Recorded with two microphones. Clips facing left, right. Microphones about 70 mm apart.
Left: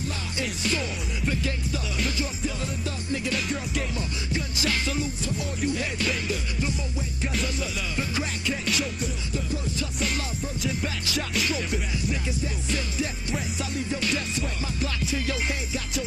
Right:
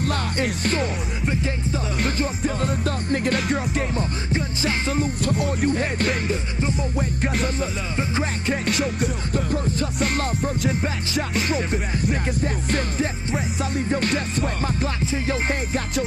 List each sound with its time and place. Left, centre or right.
0.0 s music: right
1.2 s music: right
2.0 s music: right
3.7 s music: right
5.2 s music: right
7.9 s music: right
8.5 s music: right
15.0 s music: right